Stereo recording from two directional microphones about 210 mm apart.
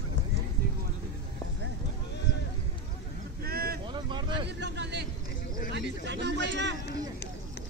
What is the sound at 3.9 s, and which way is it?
Vehicle, 20° right (ahead or behind).